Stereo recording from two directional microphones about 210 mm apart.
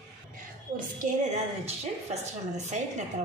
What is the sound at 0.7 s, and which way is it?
A woman's voice, 35° right (ahead or behind).